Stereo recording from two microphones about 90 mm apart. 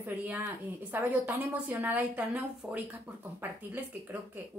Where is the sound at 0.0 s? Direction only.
20° right (ahead or behind).